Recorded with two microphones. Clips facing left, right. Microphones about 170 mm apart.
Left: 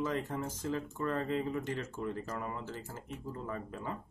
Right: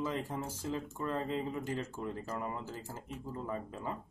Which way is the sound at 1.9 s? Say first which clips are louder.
Left 1 dB; 15° right (ahead or behind).